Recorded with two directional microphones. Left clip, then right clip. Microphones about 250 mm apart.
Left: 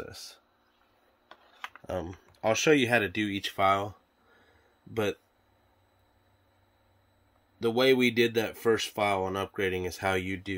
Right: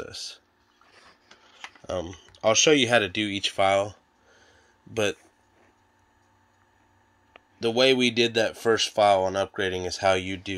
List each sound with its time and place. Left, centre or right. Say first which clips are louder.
0.0 s speech: right 6 dB; centre
2.1 s speech: right 7 dB; centre
7.6 s speech: right 3 dB; centre